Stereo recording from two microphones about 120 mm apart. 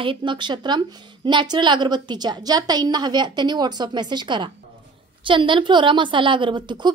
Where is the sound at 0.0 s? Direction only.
45° right (ahead or behind).